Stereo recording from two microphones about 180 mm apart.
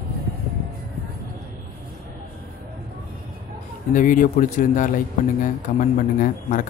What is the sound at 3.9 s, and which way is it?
A man's voice, 45° left (ahead or behind).